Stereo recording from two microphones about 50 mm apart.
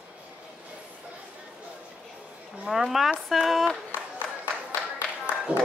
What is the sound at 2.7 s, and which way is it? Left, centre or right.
Speech, centre.